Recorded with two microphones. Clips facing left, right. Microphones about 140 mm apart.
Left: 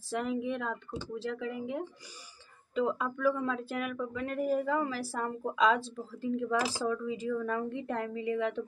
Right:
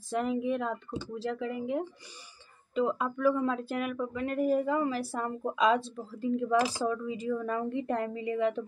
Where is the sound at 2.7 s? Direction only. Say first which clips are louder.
Right 2 dB; 15° right (ahead or behind).